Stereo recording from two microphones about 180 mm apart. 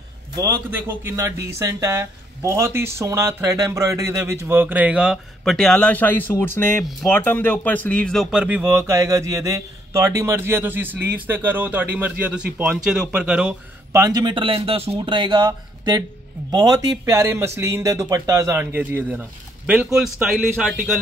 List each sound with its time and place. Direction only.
0.4 s speech: 15° right (ahead or behind)
14.0 s speech: 25° right (ahead or behind); by 20.9 s centre (ahead or behind)